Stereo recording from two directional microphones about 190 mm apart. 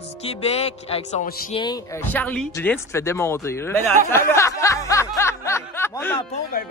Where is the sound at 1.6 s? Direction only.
20° left (ahead or behind).